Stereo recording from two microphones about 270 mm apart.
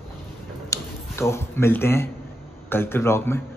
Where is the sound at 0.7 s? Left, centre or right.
Centre.